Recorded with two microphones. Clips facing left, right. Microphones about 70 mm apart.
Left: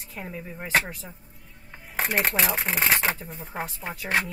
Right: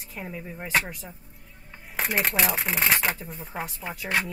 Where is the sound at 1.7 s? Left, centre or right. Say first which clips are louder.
Left 2 dB; left.